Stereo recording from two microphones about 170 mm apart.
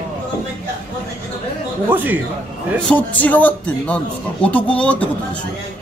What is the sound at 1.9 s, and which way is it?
Speech, 10° right (ahead or behind).